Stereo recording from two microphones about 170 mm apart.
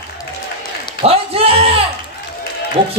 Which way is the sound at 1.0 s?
35° right (ahead or behind).